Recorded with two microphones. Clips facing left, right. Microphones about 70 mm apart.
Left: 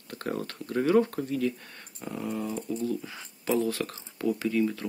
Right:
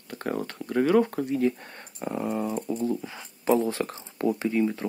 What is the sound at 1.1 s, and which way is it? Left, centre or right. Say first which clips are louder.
Speech: right 4 dB; right.